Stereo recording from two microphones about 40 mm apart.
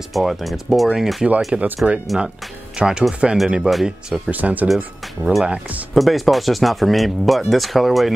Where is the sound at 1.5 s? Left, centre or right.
Right.